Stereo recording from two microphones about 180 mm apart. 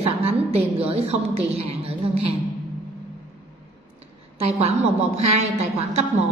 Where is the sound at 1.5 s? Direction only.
35° right (ahead or behind).